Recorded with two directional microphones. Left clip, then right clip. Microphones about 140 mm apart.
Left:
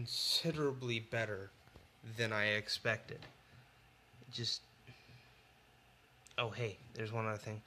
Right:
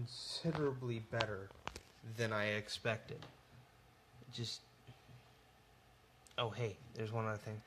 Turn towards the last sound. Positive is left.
turn(degrees=5)  # may be behind; listen again after turning